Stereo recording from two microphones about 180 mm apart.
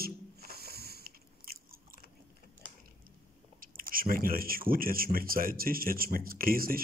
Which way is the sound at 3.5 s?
50° right (ahead or behind).